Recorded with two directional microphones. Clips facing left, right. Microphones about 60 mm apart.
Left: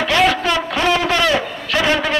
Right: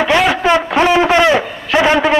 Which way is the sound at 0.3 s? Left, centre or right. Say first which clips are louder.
Right 5 dB; right.